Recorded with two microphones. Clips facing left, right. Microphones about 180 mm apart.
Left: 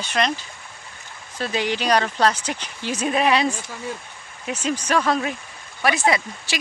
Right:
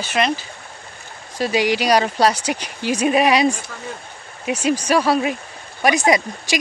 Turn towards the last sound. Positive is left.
turn(degrees=-15)  # may be behind; listen again after turning